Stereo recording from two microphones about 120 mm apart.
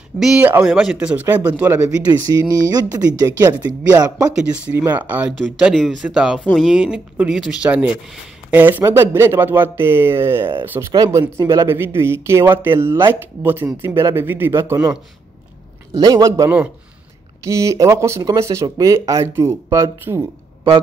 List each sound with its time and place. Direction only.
0.2 s speech: 5° right (ahead or behind)
2.2 s speech: 30° right (ahead or behind)
4.9 s speech: 15° right (ahead or behind)
10.9 s speech: 30° right (ahead or behind)
15.9 s speech: 30° right (ahead or behind)
16.4 s speech: 10° right (ahead or behind)
17.5 s speech: 25° right (ahead or behind)